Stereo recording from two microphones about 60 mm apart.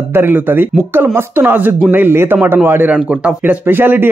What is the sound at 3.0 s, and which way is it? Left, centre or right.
Speech, right.